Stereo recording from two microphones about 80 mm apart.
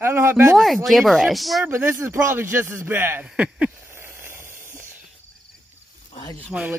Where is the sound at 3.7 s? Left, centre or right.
Right.